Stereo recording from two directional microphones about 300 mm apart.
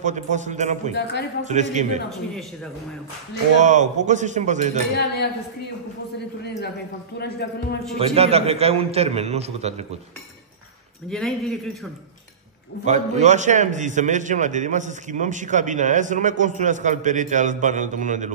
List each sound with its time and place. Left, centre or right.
0.0 s a man's voice: right
3.5 s a man's voice: right
4.9 s a woman's voice: left
6.4 s a woman's voice: left
8.0 s a man's voice: centre
11.1 s speech: centre
12.8 s a man's voice: right